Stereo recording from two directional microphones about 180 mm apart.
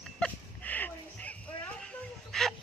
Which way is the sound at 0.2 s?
10° left (ahead or behind).